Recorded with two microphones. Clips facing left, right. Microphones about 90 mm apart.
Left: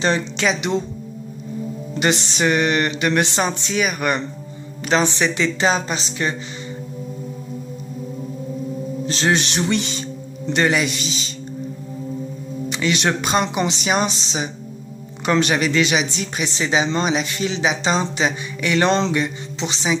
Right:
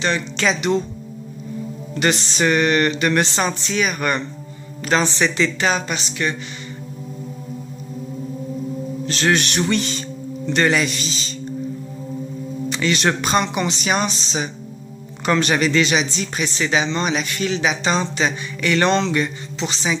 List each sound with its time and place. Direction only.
0.4 s speech: 15° left (ahead or behind)
2.0 s speech: 15° left (ahead or behind)
5.6 s speech: 25° left (ahead or behind)
9.0 s speech: 25° left (ahead or behind)
9.6 s speech: 15° left (ahead or behind)
12.6 s speech: 15° left (ahead or behind)
18.9 s a sound: 35° left (ahead or behind)
19.1 s speech: 15° left (ahead or behind)